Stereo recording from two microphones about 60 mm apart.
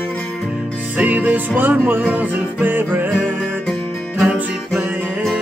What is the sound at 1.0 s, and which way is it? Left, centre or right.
Music, right.